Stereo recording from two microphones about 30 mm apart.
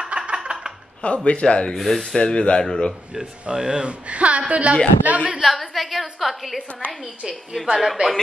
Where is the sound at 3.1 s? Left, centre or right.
Right.